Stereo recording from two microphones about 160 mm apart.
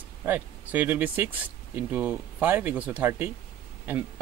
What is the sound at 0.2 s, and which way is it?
Speech, 10° right (ahead or behind).